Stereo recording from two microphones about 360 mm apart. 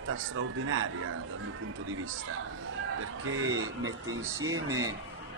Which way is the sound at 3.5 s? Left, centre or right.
Centre.